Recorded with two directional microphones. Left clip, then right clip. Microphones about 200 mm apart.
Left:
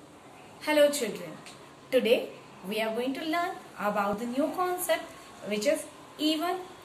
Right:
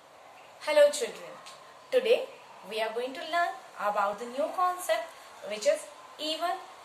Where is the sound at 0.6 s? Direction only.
15° right (ahead or behind).